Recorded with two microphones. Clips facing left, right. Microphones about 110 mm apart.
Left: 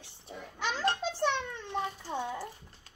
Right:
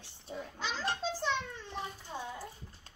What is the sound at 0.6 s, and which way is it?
A child's voice, 60° left (ahead or behind).